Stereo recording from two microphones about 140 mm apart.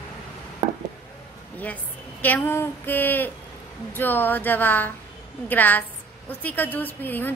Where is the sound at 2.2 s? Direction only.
15° left (ahead or behind).